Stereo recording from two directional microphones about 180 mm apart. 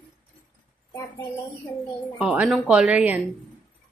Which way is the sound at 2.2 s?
5° right (ahead or behind).